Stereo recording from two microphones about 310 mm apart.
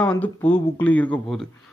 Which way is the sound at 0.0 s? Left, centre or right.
Centre.